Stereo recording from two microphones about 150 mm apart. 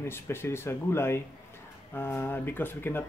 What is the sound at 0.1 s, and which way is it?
Speech, 15° left (ahead or behind).